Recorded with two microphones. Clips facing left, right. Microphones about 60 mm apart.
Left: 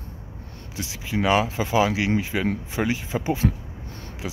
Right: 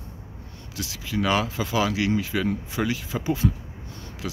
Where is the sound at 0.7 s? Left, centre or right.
Left.